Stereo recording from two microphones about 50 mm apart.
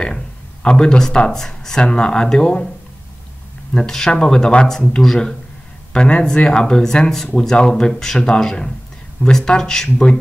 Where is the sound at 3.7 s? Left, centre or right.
Centre.